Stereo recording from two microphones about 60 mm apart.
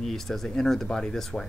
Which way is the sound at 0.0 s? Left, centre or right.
Centre.